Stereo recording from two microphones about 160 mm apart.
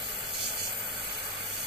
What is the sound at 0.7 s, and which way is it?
Hiss, 30° right (ahead or behind).